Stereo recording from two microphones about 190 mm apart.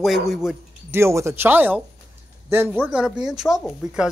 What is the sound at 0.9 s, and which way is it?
Speech, 15° right (ahead or behind).